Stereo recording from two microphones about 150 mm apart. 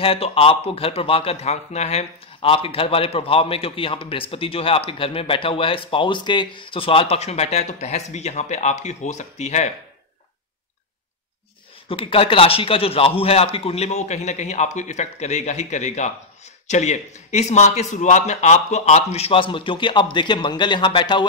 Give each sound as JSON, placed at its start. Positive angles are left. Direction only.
{"t": 0.0, "sound": "a man's voice", "side_deg": 40}
{"t": 11.9, "sound": "a man's voice", "side_deg": 40}